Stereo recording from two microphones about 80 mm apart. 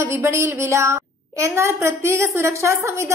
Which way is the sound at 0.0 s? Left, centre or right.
Right.